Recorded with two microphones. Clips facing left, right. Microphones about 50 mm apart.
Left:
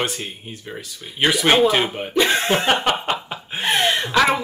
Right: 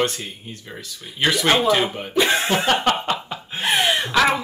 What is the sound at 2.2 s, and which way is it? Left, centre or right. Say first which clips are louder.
Speech: left 1 dB; centre.